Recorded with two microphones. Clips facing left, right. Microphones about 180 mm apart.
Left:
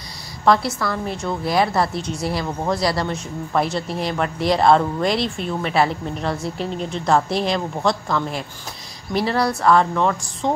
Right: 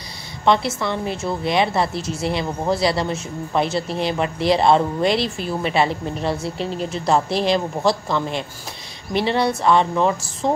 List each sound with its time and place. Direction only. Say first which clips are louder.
0.5 s speech: left 1 dB; centre (ahead or behind)
0.7 s a woman's voice: right 1 dB; 25° right (ahead or behind)
1.0 s speech: right 1 dB; 5° right (ahead or behind)